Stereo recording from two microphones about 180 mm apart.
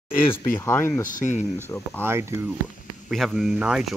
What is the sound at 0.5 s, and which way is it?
Speech, 15° left (ahead or behind).